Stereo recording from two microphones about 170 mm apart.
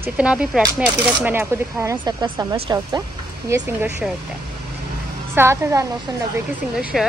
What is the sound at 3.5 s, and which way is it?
Speech, 10° right (ahead or behind).